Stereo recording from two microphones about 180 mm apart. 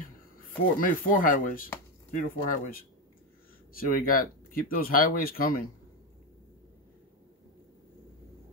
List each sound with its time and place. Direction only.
0.7 s speech: 50° left (ahead or behind)